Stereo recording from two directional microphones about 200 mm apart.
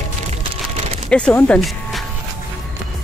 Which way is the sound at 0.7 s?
30° right (ahead or behind).